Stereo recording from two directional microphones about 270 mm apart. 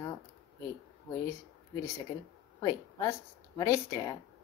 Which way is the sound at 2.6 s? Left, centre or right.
Centre.